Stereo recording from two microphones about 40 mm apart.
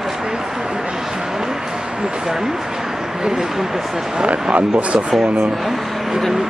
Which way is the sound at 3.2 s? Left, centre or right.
Centre.